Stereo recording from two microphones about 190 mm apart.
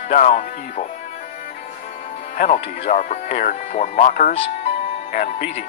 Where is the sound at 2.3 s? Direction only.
40° left (ahead or behind).